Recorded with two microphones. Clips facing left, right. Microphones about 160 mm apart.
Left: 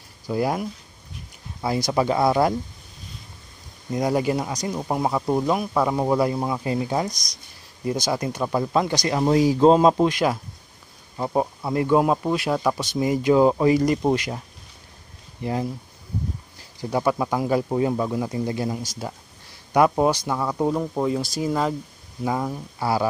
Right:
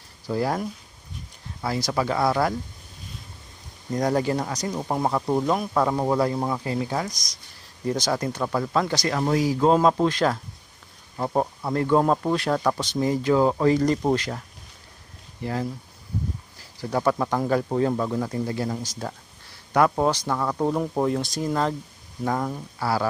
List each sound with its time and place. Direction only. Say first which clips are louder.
0.3 s speech: left 1 dB; 15° left (ahead or behind)
3.9 s speech: left 1 dB; 10° left (ahead or behind)
6.6 s speech: left 3 dB; 20° left (ahead or behind)
15.4 s speech: left 2 dB; 20° left (ahead or behind)
16.9 s speech: left 1 dB; 10° left (ahead or behind)